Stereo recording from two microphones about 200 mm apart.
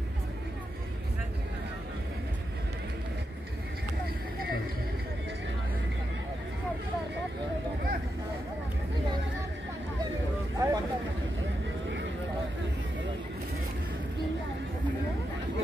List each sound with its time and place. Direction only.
10.6 s vehicle: 15° right (ahead or behind)